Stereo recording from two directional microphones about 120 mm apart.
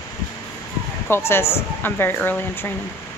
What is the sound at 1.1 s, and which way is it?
A woman's voice, 20° left (ahead or behind).